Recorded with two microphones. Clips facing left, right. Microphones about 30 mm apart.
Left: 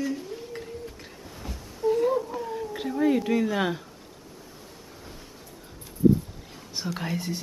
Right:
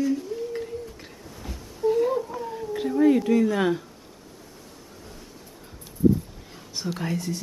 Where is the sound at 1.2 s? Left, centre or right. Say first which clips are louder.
Left 1 dB; centre.